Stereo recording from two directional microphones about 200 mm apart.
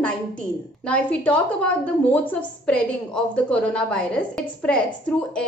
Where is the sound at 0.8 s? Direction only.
5° left (ahead or behind).